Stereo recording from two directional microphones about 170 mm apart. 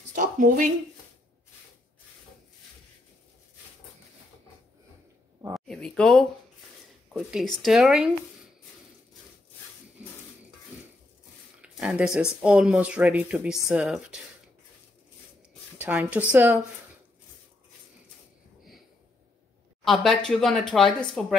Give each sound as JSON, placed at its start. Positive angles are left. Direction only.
{"t": 0.1, "sound": "a sound", "side_deg": -50}
{"t": 5.7, "sound": "speech", "side_deg": 5}
{"t": 10.7, "sound": "dishes", "side_deg": -10}
{"t": 11.6, "sound": "speech", "side_deg": -5}
{"t": 15.8, "sound": "a woman's voice", "side_deg": -5}
{"t": 19.8, "sound": "speech", "side_deg": 0}